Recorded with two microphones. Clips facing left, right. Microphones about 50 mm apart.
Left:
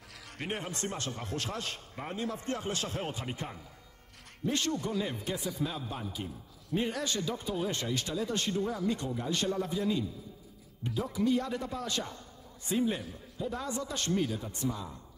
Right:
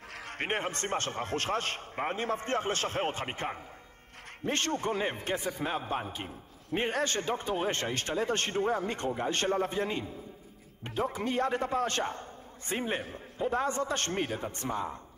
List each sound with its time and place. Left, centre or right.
0.1 s a man's voice: right